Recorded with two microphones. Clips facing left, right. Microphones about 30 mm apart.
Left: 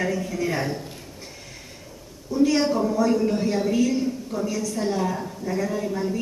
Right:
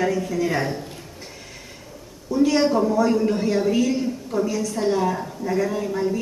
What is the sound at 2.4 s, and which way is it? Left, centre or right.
A woman's voice, centre.